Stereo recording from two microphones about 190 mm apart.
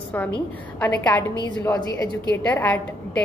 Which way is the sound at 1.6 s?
15° left (ahead or behind).